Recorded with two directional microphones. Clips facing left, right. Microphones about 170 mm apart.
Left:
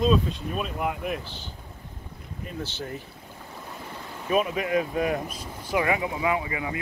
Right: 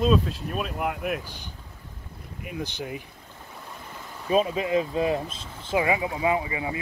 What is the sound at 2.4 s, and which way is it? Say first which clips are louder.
Speech: right 1 dB; 15° right (ahead or behind).